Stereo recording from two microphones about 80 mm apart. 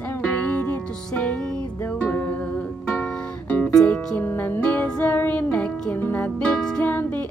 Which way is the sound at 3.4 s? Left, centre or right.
Left.